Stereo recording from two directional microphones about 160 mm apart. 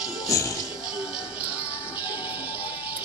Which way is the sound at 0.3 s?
20° left (ahead or behind).